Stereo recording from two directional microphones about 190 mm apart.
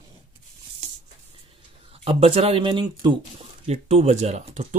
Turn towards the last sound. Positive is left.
turn(degrees=-40)  # may be behind; listen again after turning